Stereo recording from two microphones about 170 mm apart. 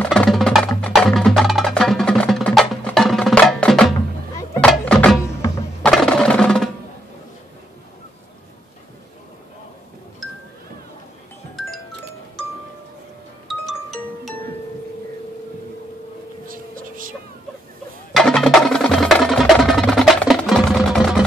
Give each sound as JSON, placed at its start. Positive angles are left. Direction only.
{"t": 0.0, "sound": "music", "side_deg": 5}
{"t": 5.8, "sound": "percussion", "side_deg": 5}
{"t": 11.6, "sound": "music", "side_deg": 0}
{"t": 13.5, "sound": "music", "side_deg": 0}
{"t": 16.4, "sound": "a sound", "side_deg": -55}
{"t": 18.1, "sound": "music", "side_deg": 0}